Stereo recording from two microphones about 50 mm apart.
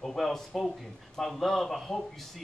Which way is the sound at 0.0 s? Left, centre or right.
Centre.